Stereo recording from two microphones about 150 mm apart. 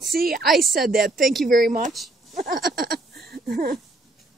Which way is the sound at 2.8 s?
90° right.